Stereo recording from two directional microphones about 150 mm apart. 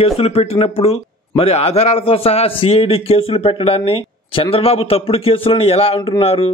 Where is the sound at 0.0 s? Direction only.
40° left (ahead or behind).